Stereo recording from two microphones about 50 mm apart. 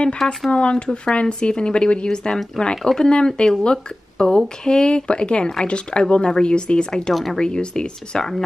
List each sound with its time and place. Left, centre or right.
0.2 s a woman's voice: centre
0.5 s a woman's voice: left